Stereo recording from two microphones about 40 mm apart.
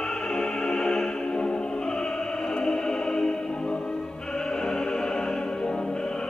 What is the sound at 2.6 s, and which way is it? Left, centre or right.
Music, centre.